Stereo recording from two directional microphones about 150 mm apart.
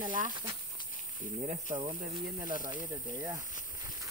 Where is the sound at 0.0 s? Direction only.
60° right (ahead or behind).